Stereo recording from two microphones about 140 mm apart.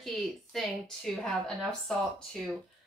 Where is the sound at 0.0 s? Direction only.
Centre (ahead or behind).